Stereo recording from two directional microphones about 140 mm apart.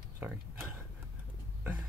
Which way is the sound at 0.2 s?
15° right (ahead or behind).